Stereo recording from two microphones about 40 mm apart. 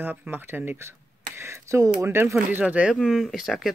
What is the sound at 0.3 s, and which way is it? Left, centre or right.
Speech, right.